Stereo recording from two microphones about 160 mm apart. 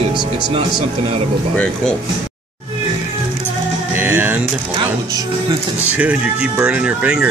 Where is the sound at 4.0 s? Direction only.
15° right (ahead or behind).